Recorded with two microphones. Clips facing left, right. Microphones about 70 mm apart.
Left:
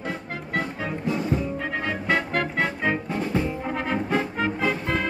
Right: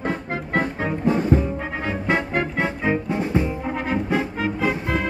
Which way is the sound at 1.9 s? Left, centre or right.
Right.